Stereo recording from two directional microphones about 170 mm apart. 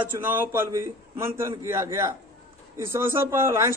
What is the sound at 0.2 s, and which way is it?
Speech, 10° right (ahead or behind).